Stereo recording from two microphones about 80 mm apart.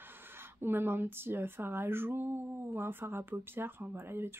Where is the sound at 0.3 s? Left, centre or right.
Right.